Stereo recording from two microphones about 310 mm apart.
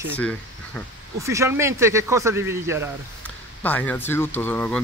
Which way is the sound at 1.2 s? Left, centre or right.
Centre.